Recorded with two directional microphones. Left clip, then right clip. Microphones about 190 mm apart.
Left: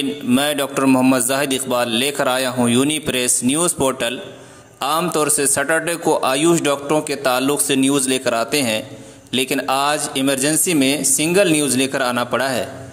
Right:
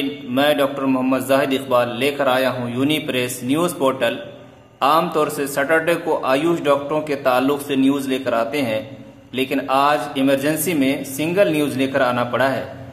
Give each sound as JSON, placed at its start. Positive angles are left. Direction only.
{"t": 0.3, "sound": "a man's voice", "side_deg": 40}